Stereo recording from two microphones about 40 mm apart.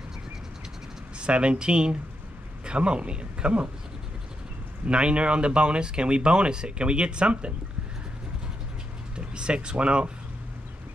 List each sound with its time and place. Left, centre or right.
1.2 s speech: right
4.8 s speech: right
9.1 s speech: right